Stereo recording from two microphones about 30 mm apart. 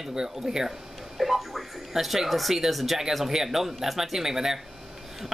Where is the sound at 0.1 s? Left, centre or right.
Right.